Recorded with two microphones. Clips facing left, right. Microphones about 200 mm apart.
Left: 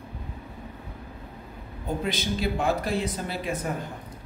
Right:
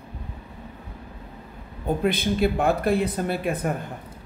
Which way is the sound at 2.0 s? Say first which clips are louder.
Right 7 dB; 55° right (ahead or behind).